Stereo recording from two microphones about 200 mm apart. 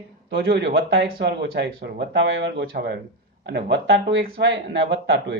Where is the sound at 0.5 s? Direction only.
60° right (ahead or behind).